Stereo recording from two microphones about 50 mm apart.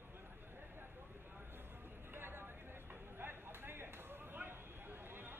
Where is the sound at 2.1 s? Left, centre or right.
Right.